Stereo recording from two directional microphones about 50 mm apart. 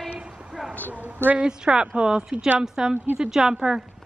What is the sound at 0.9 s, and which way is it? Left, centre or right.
Speech, right.